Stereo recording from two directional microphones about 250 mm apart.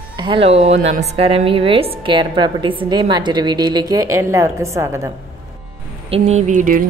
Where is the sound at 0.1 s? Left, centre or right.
Centre.